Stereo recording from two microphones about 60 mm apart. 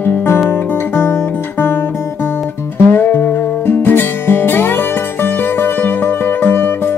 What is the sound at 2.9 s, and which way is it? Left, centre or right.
Music, left.